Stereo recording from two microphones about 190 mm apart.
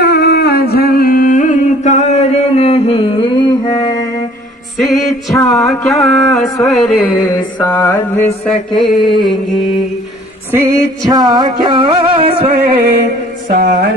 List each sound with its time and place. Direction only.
0.0 s a sound: 60° left (ahead or behind); by 4.0 s 20° left (ahead or behind)
4.7 s music: centre (ahead or behind)
7.2 s mantra: 15° left (ahead or behind)
8.5 s music: centre (ahead or behind)
10.5 s music: 15° right (ahead or behind)
12.5 s mantra: 60° right (ahead or behind)